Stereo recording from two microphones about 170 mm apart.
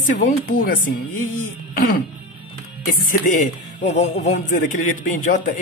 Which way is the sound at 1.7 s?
65° left (ahead or behind).